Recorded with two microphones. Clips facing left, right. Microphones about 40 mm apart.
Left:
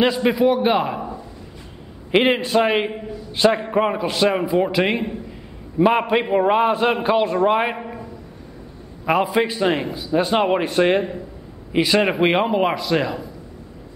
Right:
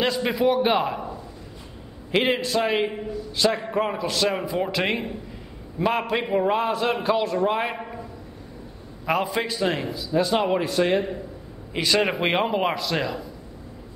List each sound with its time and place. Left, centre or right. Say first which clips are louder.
0.0 s a man's voice: left 5 dB; centre
2.0 s a man's voice: left 5 dB; left
5.8 s a man's voice: left 7 dB; left
9.0 s a man's voice: left 6 dB; centre; by 11.1 s left
11.7 s a man's voice: left 4 dB; centre